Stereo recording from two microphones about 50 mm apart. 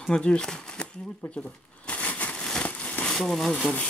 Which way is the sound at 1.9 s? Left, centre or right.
Left.